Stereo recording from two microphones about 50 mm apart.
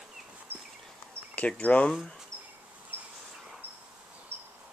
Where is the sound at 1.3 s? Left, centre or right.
Left.